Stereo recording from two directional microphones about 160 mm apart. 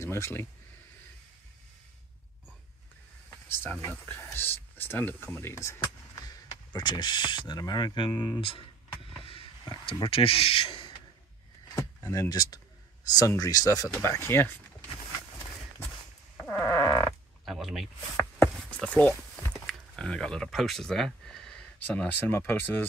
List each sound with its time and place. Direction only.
0.0 s speech: 15° left (ahead or behind)
3.4 s speech: 15° left (ahead or behind); by 8.6 s 35° left (ahead or behind)
9.7 s speech: 30° left (ahead or behind)
11.7 s speech: 20° left (ahead or behind)
16.3 s music: 15° left (ahead or behind)
17.5 s speech: centre (ahead or behind)